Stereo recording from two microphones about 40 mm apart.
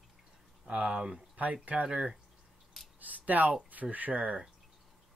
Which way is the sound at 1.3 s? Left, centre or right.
Right.